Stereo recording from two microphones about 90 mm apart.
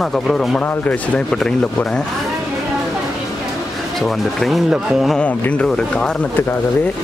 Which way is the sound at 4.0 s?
Centre (ahead or behind).